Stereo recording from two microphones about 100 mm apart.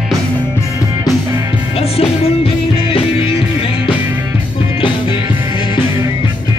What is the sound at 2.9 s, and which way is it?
Music, 65° left (ahead or behind).